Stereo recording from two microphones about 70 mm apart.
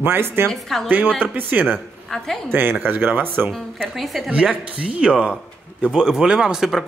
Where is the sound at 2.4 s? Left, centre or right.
Right.